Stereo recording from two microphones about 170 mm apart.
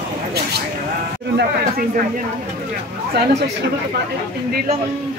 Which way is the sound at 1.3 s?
60° right (ahead or behind).